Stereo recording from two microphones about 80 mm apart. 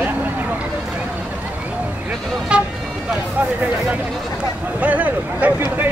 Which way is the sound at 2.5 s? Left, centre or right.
Centre.